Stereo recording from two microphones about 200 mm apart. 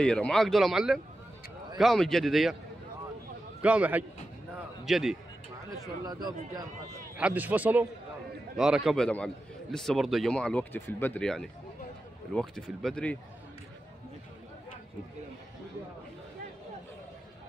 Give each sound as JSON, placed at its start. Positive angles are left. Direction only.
{"t": 0.0, "sound": "a man's voice", "side_deg": 5}
{"t": 3.6, "sound": "a man's voice", "side_deg": -5}
{"t": 6.0, "sound": "speech", "side_deg": -20}
{"t": 7.2, "sound": "a man's voice", "side_deg": -5}